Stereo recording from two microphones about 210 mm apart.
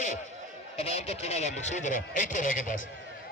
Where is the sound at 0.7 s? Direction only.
30° left (ahead or behind).